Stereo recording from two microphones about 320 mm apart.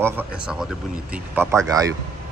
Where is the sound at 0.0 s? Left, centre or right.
Centre.